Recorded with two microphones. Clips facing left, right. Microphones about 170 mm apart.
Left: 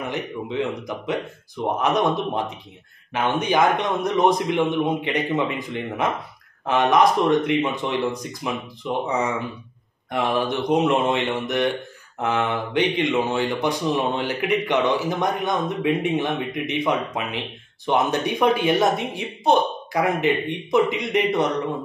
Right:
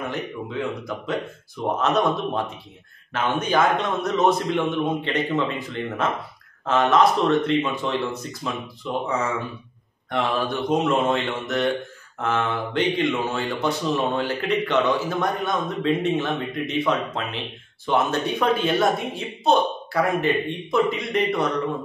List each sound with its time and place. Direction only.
0.0 s speech: 20° left (ahead or behind)